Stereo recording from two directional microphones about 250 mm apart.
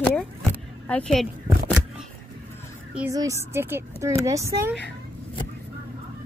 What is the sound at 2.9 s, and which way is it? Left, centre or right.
Speech, centre.